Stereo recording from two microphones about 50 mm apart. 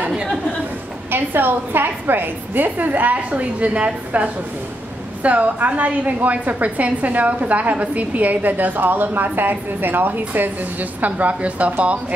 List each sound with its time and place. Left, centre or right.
1.1 s a woman's voice: right